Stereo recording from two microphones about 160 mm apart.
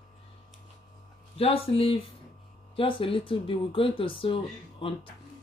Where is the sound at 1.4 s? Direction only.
35° left (ahead or behind).